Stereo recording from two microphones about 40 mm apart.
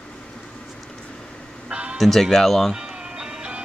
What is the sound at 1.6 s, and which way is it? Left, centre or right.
Music, right.